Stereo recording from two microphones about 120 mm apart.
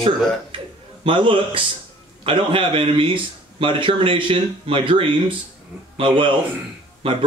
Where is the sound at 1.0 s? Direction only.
45° right (ahead or behind).